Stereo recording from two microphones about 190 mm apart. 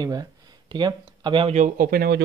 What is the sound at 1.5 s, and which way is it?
Speech, 45° right (ahead or behind).